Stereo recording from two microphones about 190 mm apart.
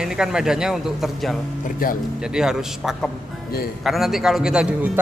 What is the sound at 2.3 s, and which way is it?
A man's voice, centre (ahead or behind).